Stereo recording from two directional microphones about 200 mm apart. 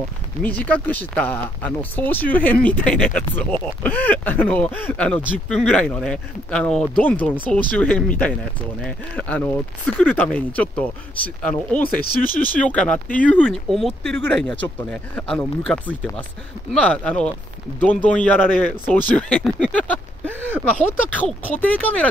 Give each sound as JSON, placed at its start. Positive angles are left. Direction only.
{"t": 0.4, "sound": "speech", "side_deg": 5}
{"t": 12.0, "sound": "speech", "side_deg": 45}
{"t": 12.5, "sound": "speech", "side_deg": 5}
{"t": 20.2, "sound": "speech", "side_deg": -10}
{"t": 20.7, "sound": "speech", "side_deg": 5}